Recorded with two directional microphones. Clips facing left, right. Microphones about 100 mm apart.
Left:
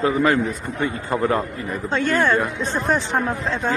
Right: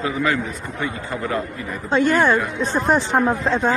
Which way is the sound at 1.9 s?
10° right (ahead or behind).